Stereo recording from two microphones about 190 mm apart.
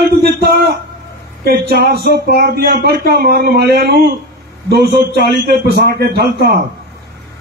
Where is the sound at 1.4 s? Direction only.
55° right (ahead or behind).